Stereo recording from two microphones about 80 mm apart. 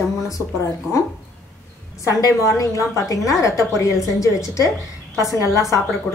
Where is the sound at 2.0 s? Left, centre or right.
Left.